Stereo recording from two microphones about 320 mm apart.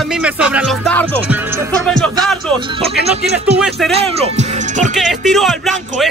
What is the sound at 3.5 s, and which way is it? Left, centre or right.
Music, centre.